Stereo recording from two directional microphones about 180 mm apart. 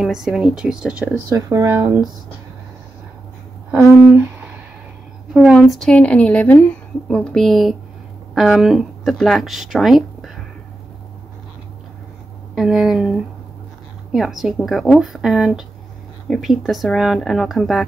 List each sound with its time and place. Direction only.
0.0 s speech: centre (ahead or behind)
1.3 s speech: 15° right (ahead or behind)
3.7 s speech: 15° right (ahead or behind)
5.3 s speech: centre (ahead or behind)
12.5 s speech: centre (ahead or behind)